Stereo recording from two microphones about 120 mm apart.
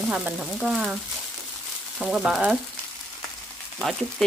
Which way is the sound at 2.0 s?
5° right (ahead or behind).